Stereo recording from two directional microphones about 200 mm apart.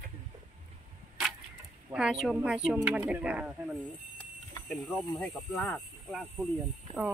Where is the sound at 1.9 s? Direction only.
5° right (ahead or behind).